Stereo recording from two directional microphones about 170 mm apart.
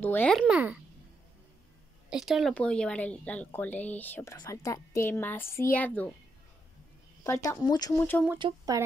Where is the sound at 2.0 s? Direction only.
Centre (ahead or behind).